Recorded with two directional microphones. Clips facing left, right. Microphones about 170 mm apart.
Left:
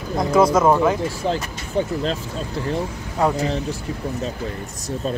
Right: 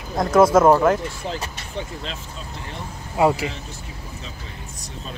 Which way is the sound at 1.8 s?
45° left (ahead or behind).